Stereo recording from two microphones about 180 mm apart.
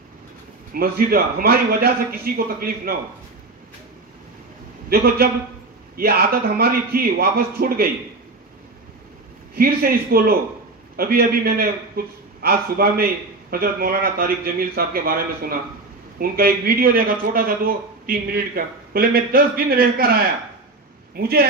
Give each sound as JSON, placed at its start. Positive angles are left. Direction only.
{"t": 0.7, "sound": "a man's voice", "side_deg": -55}
{"t": 4.8, "sound": "a man's voice", "side_deg": -60}
{"t": 9.6, "sound": "a man's voice", "side_deg": -55}